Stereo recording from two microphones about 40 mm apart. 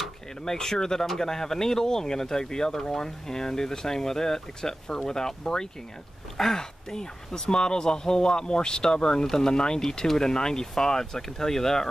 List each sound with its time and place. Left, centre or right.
0.5 s speech: centre